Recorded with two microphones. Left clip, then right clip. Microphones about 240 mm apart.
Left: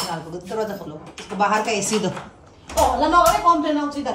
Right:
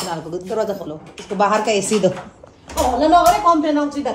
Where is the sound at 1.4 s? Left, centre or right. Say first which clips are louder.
Right 3 dB; centre.